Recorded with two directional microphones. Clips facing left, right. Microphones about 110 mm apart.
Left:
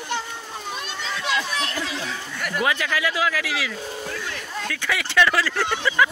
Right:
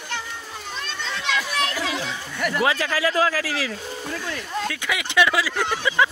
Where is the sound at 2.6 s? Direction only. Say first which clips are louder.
Right 1 dB; 30° right (ahead or behind).